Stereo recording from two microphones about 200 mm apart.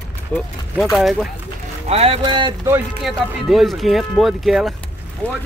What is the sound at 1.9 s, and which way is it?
Speech, 30° right (ahead or behind).